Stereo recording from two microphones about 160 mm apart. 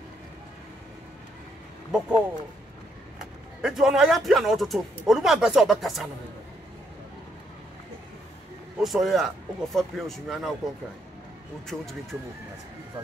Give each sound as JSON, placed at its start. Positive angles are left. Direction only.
{"t": 1.9, "sound": "a man's voice", "side_deg": -5}
{"t": 3.2, "sound": "a man's voice", "side_deg": -5}
{"t": 8.8, "sound": "a man's voice", "side_deg": 0}
{"t": 11.6, "sound": "a man's voice", "side_deg": 0}